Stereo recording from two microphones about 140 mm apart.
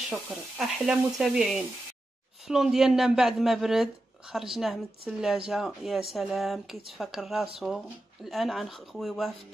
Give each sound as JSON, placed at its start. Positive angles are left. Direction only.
{"t": 0.3, "sound": "speech", "side_deg": 0}